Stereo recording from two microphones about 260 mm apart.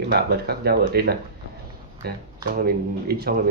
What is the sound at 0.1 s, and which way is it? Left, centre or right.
Speech, right.